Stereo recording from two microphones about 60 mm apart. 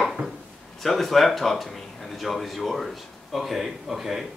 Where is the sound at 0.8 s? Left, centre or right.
Centre.